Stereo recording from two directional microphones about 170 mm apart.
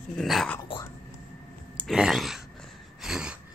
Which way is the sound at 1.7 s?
Centre (ahead or behind).